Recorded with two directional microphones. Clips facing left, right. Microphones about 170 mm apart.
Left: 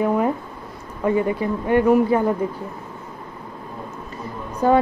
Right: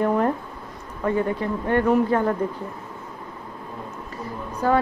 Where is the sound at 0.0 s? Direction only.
5° left (ahead or behind).